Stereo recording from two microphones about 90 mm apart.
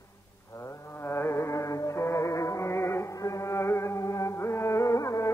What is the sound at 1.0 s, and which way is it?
Music, 25° left (ahead or behind).